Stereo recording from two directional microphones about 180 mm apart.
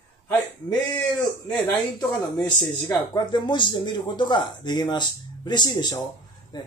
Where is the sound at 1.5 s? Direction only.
10° left (ahead or behind).